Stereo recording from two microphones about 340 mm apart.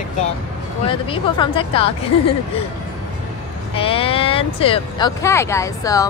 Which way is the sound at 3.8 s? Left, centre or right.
Centre.